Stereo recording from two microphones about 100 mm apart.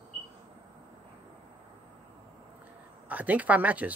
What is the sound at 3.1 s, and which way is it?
Speech, 15° right (ahead or behind).